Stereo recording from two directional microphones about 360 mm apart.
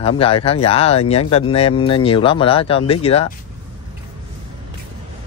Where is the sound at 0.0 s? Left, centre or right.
Centre.